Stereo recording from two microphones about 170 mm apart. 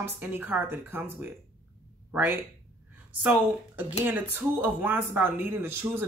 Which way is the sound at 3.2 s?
10° right (ahead or behind).